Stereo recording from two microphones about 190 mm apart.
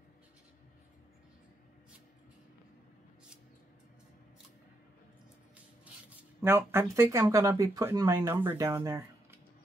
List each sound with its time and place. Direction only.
6.0 s speech: 10° right (ahead or behind)